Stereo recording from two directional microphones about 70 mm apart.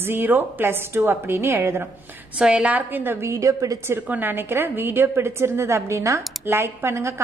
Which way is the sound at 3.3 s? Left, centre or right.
Right.